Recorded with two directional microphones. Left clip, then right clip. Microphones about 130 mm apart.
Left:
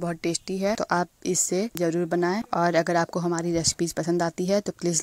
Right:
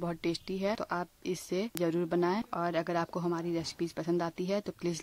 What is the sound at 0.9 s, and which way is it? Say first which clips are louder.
Speech: left 10 dB; 50° left (ahead or behind).